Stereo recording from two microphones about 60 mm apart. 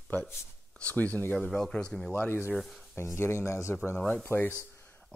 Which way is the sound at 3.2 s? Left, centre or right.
Left.